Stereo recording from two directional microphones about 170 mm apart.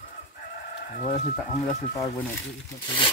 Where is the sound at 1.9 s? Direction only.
20° left (ahead or behind).